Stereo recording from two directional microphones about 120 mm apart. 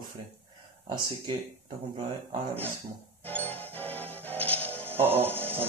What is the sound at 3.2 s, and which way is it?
Music, 15° left (ahead or behind).